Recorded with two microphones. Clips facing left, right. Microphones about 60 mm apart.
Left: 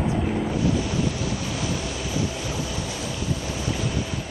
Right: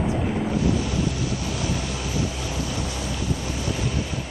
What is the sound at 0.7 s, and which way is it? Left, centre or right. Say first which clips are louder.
Boat: even; left.